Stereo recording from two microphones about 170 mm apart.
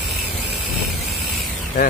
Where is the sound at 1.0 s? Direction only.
Centre (ahead or behind).